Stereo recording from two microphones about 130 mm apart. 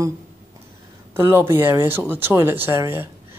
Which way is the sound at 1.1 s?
20° right (ahead or behind).